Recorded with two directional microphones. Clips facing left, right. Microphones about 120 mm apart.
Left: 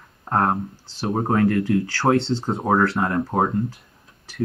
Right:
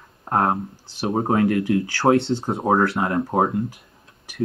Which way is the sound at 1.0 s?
10° right (ahead or behind).